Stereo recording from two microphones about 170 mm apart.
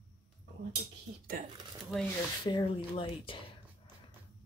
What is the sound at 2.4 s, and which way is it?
Speech, 30° left (ahead or behind).